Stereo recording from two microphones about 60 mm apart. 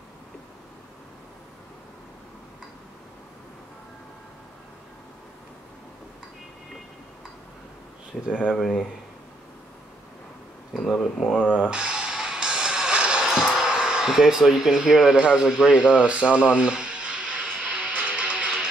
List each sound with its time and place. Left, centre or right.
8.3 s speech: centre
8.5 s speech: centre
10.8 s speech: centre
11.7 s a sound: centre
13.3 s speech: centre
15.4 s a sound: centre